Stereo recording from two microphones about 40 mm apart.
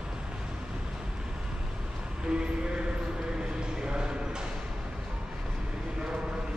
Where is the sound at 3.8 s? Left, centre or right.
Centre.